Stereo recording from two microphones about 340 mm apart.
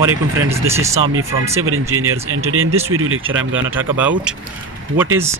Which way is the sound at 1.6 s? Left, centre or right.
Right.